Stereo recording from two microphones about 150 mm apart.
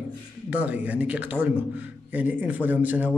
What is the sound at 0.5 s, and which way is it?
A man's voice, 10° right (ahead or behind).